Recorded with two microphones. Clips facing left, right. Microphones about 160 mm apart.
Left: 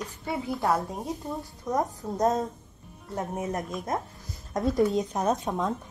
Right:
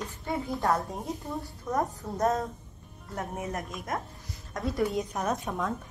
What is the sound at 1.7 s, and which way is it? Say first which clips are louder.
Speech: left 2 dB; 20° left (ahead or behind).